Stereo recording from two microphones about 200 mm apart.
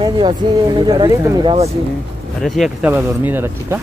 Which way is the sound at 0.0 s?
20° right (ahead or behind).